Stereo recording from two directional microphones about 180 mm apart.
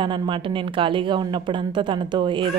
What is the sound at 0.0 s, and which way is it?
Speech, 25° right (ahead or behind).